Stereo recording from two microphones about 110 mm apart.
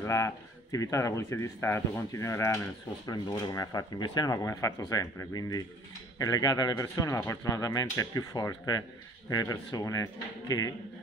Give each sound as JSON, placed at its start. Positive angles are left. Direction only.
{"t": 0.0, "sound": "speech", "side_deg": 30}